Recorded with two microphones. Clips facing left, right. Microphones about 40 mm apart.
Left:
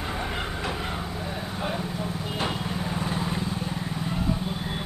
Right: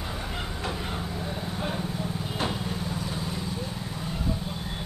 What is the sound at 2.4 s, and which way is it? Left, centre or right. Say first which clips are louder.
Vehicle: left 1 dB; left.